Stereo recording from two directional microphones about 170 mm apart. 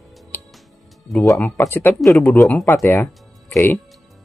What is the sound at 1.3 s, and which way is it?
Speech, 10° left (ahead or behind).